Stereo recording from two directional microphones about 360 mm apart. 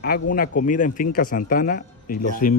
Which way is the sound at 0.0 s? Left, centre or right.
Left.